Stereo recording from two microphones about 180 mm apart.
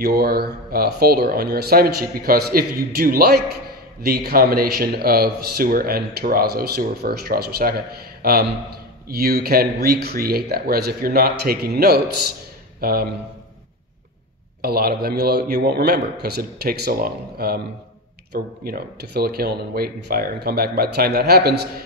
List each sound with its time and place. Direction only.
0.0 s a man's voice: 60° right (ahead or behind)
14.6 s speech: 55° right (ahead or behind)